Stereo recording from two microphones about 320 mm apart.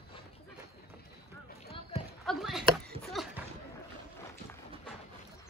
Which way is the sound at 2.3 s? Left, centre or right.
Centre.